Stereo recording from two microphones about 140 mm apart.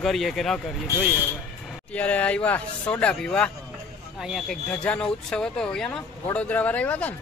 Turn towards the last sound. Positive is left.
turn(degrees=10)  # may be behind; listen again after turning